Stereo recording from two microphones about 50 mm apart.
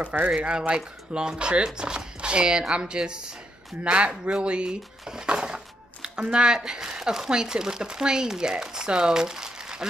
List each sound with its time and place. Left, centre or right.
0.0 s speech: right
0.4 s speech: right